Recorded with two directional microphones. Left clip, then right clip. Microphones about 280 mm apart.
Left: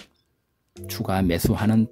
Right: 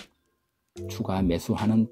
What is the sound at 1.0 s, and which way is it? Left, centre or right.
Speech, centre.